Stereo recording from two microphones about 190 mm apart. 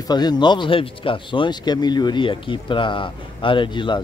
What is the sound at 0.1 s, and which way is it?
Speech, 20° left (ahead or behind).